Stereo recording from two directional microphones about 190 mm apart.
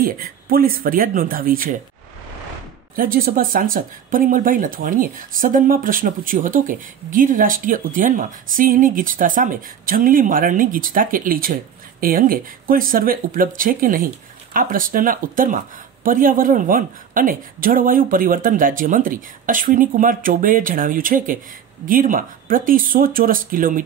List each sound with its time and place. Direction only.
0.0 s speech: 50° right (ahead or behind)
3.0 s speech: 50° right (ahead or behind)